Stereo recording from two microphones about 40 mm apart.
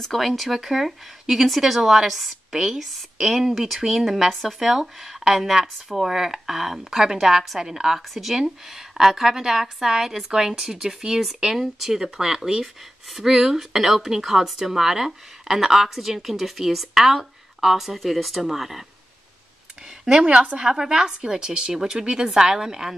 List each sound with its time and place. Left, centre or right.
0.0 s speech: centre
0.4 s speech: centre
4.3 s speech: centre
4.6 s speech: centre
20.1 s a woman's voice: right